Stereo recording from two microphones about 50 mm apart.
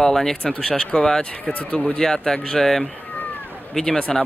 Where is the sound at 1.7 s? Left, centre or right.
Left.